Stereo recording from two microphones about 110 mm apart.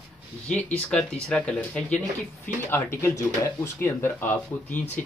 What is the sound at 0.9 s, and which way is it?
Speech, 10° left (ahead or behind).